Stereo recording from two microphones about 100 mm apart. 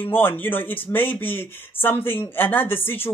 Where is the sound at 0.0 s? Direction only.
20° left (ahead or behind).